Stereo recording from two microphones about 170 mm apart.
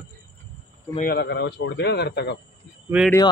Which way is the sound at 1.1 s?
80° left.